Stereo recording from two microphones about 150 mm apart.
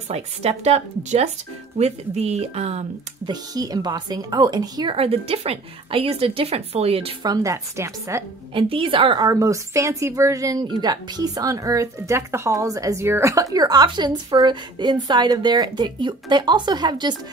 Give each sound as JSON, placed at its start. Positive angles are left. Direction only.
{"t": 0.1, "sound": "speech", "side_deg": -45}
{"t": 3.3, "sound": "speech", "side_deg": -25}
{"t": 4.9, "sound": "a woman's voice", "side_deg": -40}
{"t": 7.2, "sound": "speech", "side_deg": -20}
{"t": 8.5, "sound": "a woman's voice", "side_deg": -35}
{"t": 9.3, "sound": "speech", "side_deg": -20}